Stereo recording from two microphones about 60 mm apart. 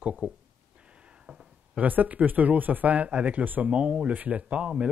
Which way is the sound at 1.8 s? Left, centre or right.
Right.